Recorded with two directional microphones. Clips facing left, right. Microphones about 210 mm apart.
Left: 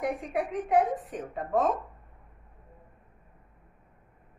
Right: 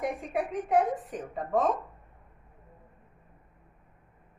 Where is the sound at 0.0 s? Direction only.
Centre (ahead or behind).